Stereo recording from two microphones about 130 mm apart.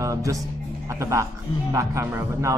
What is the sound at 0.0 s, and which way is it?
Speech, 25° right (ahead or behind).